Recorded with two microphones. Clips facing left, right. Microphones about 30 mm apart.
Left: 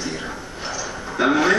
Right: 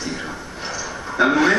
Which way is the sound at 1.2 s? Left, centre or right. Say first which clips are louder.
Right 1 dB; centre.